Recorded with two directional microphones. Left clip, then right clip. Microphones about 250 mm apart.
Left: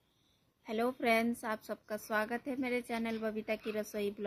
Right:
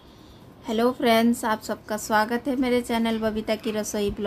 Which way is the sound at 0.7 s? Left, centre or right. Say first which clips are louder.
Right 11 dB; centre.